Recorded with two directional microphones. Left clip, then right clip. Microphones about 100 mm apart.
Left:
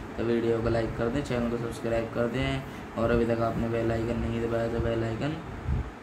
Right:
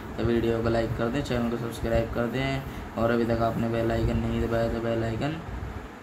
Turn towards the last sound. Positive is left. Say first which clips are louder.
# right 1 dB
turn(degrees=-15)  # may be behind; listen again after turning